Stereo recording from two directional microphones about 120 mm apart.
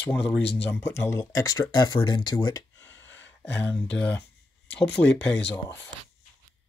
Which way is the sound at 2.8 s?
20° left (ahead or behind).